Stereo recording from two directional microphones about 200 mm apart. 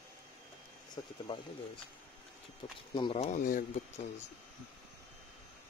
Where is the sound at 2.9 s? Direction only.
25° left (ahead or behind).